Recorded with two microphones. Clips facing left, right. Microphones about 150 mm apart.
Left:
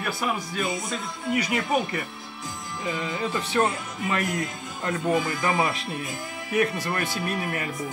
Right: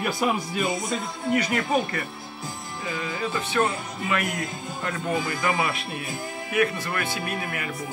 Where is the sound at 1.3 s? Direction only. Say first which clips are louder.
Right 1 dB; 10° left (ahead or behind).